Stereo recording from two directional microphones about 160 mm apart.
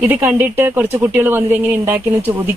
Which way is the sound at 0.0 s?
10° right (ahead or behind).